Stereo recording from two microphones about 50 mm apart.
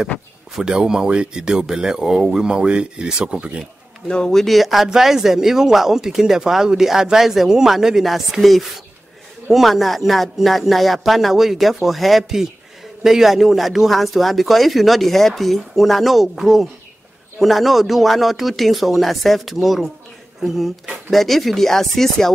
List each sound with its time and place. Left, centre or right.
0.6 s speech: centre
4.1 s speech: centre